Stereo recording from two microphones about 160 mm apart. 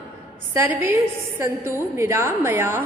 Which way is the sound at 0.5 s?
15° right (ahead or behind).